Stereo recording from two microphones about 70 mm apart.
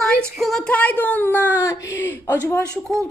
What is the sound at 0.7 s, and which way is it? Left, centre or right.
Speech, left.